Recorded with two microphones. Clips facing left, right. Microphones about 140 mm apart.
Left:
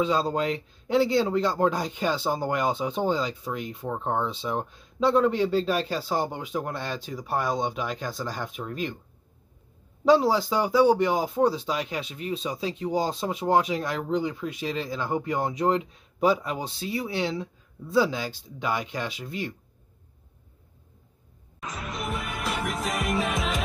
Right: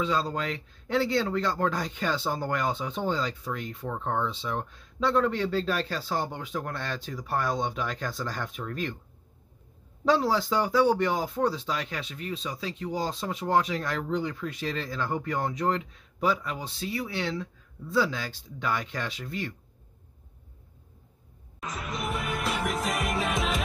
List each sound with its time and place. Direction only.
0.0 s speech: 20° left (ahead or behind)
10.0 s speech: 10° left (ahead or behind)
21.5 s music: centre (ahead or behind)